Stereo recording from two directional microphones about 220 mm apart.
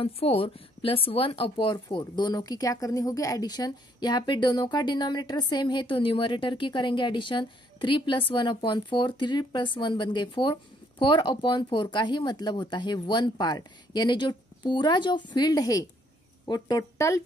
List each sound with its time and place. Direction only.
0.0 s a woman's voice: 25° left (ahead or behind)